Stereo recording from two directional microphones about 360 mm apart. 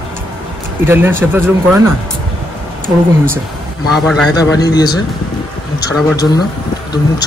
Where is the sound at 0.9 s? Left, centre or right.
Centre.